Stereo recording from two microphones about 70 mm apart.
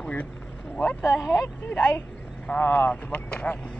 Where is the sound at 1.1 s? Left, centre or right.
Left.